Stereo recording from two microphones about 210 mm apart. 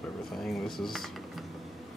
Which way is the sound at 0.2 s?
Centre (ahead or behind).